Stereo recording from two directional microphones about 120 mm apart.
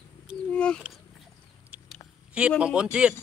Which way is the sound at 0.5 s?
10° left (ahead or behind).